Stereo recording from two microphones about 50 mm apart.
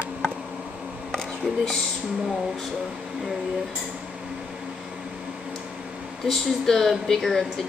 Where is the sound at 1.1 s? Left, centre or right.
Centre.